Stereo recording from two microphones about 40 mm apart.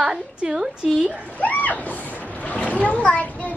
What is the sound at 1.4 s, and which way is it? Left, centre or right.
Speech, left.